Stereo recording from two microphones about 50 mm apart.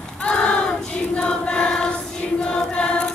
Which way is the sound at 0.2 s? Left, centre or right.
Left.